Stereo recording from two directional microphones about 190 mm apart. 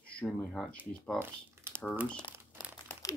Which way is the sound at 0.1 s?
5° left (ahead or behind).